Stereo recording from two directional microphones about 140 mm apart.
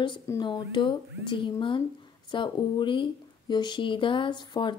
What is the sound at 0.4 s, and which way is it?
Speech, 35° left (ahead or behind).